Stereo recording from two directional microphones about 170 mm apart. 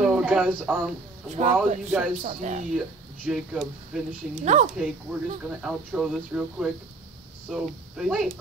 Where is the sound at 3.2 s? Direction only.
5° right (ahead or behind).